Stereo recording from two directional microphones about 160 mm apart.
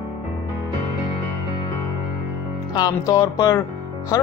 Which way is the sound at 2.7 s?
25° left (ahead or behind).